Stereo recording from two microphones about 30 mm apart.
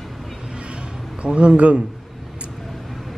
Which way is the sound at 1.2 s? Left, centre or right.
Right.